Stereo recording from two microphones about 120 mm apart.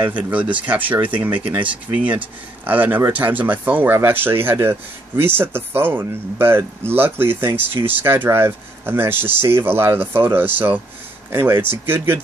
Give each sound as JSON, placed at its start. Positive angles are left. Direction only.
{"t": 0.0, "sound": "speech", "side_deg": -15}